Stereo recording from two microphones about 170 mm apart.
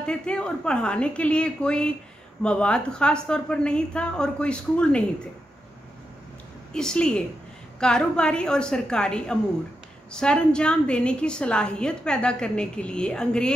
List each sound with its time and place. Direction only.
0.0 s a woman's voice: 5° left (ahead or behind)
6.7 s a woman's voice: 5° left (ahead or behind)